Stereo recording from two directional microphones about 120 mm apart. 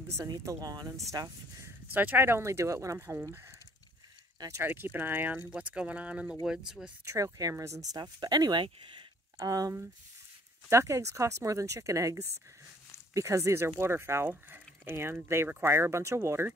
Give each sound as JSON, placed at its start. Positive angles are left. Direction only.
{"t": 0.2, "sound": "speech", "side_deg": -30}
{"t": 2.0, "sound": "speech", "side_deg": -15}
{"t": 4.4, "sound": "speech", "side_deg": -25}
{"t": 7.1, "sound": "speech", "side_deg": -25}
{"t": 7.9, "sound": "speech", "side_deg": -35}